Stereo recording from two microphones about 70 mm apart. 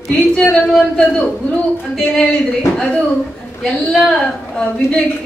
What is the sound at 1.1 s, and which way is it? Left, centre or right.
Speech, left.